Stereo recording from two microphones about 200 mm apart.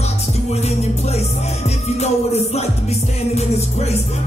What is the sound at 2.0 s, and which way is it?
Music, 30° left (ahead or behind).